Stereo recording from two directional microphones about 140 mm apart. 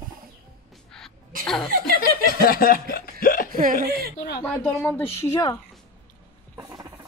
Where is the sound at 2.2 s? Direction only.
90° left.